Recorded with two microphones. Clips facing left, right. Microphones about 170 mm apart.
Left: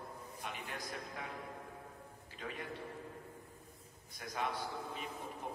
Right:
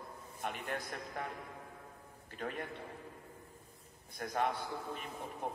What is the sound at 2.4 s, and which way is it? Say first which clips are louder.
Speech: right 4 dB; 55° right (ahead or behind).